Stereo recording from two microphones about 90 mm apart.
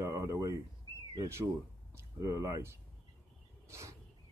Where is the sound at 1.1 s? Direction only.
35° right (ahead or behind).